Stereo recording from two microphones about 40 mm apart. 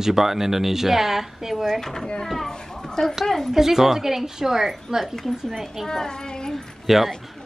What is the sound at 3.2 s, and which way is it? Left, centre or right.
Speech, centre.